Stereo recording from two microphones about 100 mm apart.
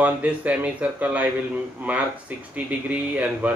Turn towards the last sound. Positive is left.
turn(degrees=-15)  # may be behind; listen again after turning